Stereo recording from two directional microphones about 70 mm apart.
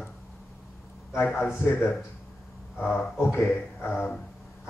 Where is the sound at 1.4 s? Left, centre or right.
Left.